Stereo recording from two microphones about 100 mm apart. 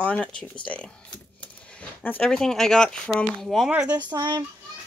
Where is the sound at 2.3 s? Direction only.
5° left (ahead or behind).